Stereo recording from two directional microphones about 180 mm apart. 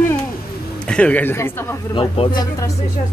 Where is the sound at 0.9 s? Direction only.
5° left (ahead or behind).